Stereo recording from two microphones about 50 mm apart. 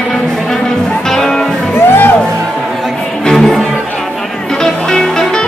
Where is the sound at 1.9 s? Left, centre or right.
Left.